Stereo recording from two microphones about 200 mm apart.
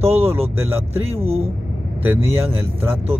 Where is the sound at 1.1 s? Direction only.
30° right (ahead or behind).